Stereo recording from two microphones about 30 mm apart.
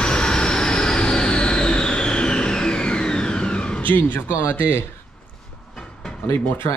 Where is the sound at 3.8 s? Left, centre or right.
Left.